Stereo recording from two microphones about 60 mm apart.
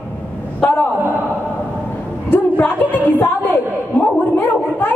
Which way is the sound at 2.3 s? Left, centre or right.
Left.